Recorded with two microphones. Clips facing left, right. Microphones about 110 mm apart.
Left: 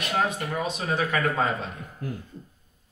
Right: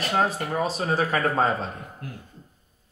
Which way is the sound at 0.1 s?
35° right (ahead or behind).